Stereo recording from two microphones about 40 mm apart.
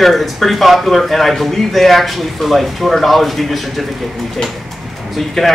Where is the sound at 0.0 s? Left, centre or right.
Centre.